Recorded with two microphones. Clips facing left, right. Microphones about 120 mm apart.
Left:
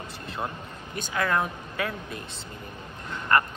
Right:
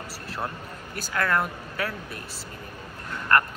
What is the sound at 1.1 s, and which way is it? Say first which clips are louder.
Speech: right 1 dB; 15° left (ahead or behind).